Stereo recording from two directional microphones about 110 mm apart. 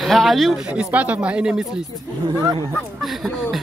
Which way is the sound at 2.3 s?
40° right (ahead or behind).